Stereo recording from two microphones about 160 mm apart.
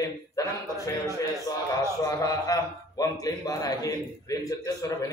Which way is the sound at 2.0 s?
20° left (ahead or behind).